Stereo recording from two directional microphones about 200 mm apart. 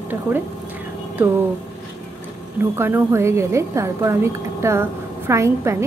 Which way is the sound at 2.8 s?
10° right (ahead or behind).